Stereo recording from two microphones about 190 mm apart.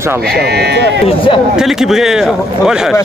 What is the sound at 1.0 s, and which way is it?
Speech, 25° left (ahead or behind).